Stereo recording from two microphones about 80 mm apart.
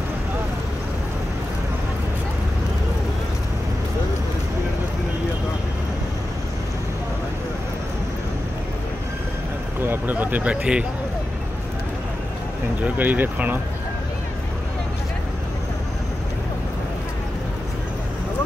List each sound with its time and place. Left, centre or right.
9.8 s speech: right
12.8 s speech: right